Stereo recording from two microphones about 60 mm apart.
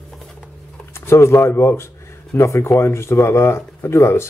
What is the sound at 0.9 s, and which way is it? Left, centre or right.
A man's voice, left.